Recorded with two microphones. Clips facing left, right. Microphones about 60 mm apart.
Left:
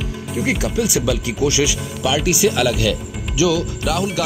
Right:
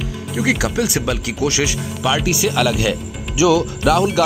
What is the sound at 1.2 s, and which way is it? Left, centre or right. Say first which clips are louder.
Speech: left 1 dB; right.